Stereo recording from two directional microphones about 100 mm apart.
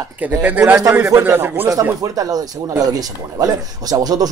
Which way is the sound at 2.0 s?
40° right (ahead or behind).